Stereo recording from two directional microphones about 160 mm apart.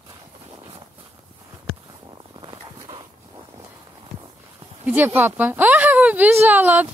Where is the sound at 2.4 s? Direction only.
30° right (ahead or behind).